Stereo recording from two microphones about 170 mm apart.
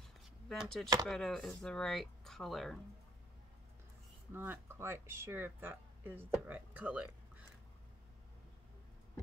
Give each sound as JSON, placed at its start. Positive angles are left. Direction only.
{"t": 0.5, "sound": "speech", "side_deg": 0}
{"t": 4.3, "sound": "speech", "side_deg": -15}